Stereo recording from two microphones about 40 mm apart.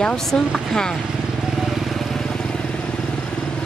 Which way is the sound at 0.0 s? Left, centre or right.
Centre.